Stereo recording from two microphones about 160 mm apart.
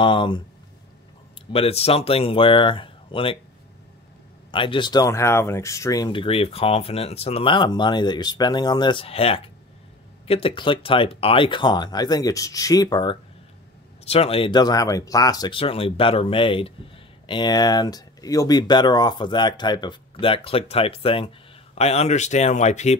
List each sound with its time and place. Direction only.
0.0 s speech: 30° left (ahead or behind)
1.5 s speech: 40° left (ahead or behind)
4.5 s speech: 30° left (ahead or behind)
14.0 s speech: 40° left (ahead or behind)